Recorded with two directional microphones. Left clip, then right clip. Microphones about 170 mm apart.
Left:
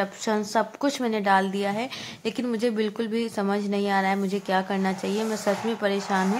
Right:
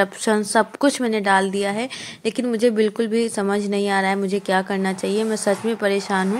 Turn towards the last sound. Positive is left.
turn(degrees=-20)  # may be behind; listen again after turning